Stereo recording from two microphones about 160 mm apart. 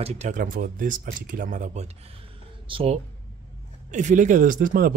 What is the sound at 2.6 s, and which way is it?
Speech, 35° right (ahead or behind).